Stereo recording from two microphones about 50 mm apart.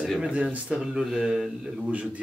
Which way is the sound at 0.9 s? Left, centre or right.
Centre.